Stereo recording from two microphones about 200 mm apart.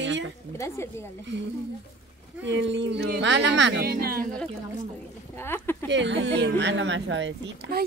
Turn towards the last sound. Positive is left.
turn(degrees=-65)  # may be behind; listen again after turning